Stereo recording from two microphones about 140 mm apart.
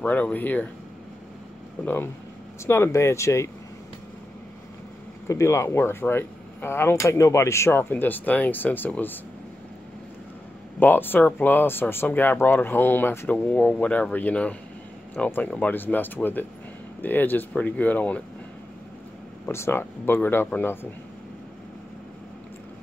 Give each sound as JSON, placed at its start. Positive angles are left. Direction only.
{"t": 0.0, "sound": "speech", "side_deg": 10}
{"t": 2.6, "sound": "speech", "side_deg": 20}
{"t": 5.3, "sound": "speech", "side_deg": 20}
{"t": 10.8, "sound": "speech", "side_deg": 15}
{"t": 19.4, "sound": "speech", "side_deg": 15}